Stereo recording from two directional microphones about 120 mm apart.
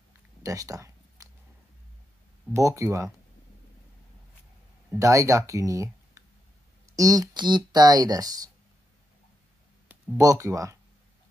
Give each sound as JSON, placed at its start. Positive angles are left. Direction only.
{"t": 0.4, "sound": "a sound", "side_deg": -30}
{"t": 2.5, "sound": "speech", "side_deg": -25}
{"t": 4.9, "sound": "speech", "side_deg": -25}
{"t": 10.1, "sound": "speech", "side_deg": -30}